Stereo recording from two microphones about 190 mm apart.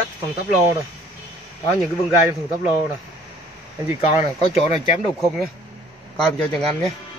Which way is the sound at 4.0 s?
30° left (ahead or behind).